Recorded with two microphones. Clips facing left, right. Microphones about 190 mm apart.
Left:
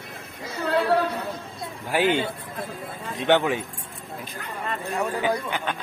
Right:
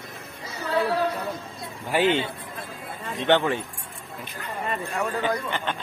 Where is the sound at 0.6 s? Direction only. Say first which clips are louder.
Left 2 dB; 70° left (ahead or behind).